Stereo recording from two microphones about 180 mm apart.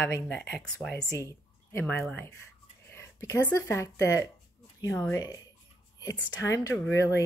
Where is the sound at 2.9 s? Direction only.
15° left (ahead or behind).